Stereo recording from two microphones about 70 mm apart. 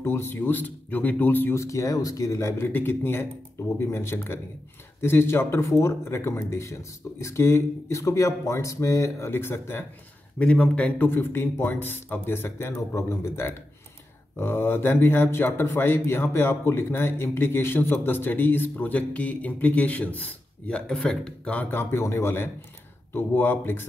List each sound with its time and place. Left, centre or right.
0.0 s speech: left
1.5 s speech: left
2.7 s a man's voice: left
9.3 s a man's voice: left
10.4 s speech: centre
11.1 s a man's voice: left
21.7 s a man's voice: left